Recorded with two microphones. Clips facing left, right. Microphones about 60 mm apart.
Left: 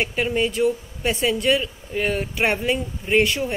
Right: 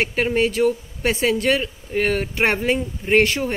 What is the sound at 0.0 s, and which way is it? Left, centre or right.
Speech, right.